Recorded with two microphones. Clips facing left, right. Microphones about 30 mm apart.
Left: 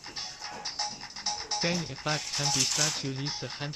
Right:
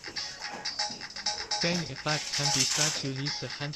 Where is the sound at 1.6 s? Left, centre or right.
Centre.